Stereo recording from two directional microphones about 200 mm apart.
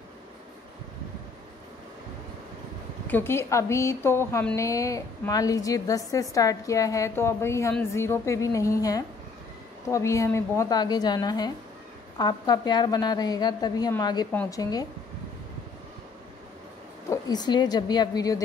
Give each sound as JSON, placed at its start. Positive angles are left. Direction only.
{"t": 3.1, "sound": "a woman's voice", "side_deg": 10}
{"t": 17.1, "sound": "a woman's voice", "side_deg": 20}